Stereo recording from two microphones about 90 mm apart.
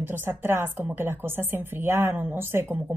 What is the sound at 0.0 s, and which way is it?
A woman's voice, 25° right (ahead or behind).